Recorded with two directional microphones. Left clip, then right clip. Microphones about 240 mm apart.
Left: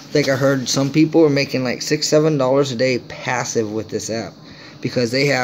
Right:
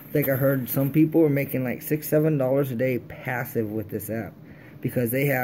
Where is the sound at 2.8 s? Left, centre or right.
Centre.